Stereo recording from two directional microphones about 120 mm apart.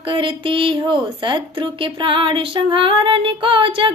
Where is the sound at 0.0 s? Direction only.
45° right (ahead or behind).